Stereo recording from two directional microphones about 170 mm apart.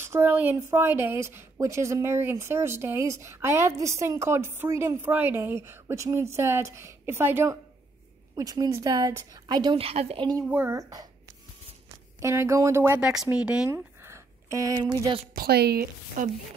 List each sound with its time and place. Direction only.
0.0 s a woman's voice: 15° right (ahead or behind); by 10.2 s 35° right (ahead or behind)
10.5 s speech: 15° right (ahead or behind)
13.0 s speech: 5° right (ahead or behind)
13.7 s a sound: 15° right (ahead or behind)
15.3 s speech: 65° right (ahead or behind)